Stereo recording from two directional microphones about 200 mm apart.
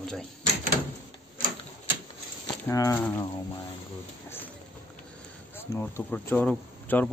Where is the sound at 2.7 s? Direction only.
15° left (ahead or behind).